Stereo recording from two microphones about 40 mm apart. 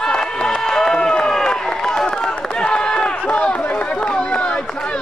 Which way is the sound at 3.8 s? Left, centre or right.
Left.